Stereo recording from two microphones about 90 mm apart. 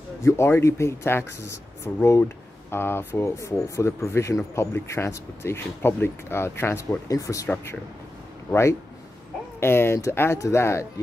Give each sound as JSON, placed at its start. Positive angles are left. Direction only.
{"t": 0.2, "sound": "speech", "side_deg": 30}
{"t": 7.1, "sound": "speech", "side_deg": 40}
{"t": 8.5, "sound": "speech", "side_deg": 30}